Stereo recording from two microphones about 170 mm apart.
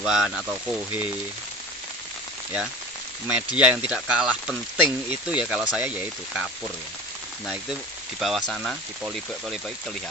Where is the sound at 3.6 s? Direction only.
5° right (ahead or behind).